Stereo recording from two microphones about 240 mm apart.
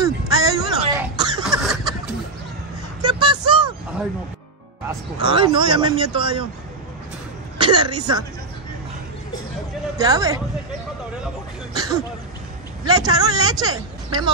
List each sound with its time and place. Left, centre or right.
0.0 s music: centre
1.6 s a sound: centre
3.0 s vehicle: centre
5.2 s speech: centre
7.5 s speech: centre
9.9 s speech: centre
11.7 s speech: centre